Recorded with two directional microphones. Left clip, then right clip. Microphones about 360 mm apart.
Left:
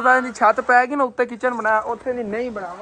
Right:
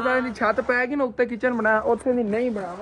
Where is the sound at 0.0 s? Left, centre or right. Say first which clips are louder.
Left 7 dB; centre.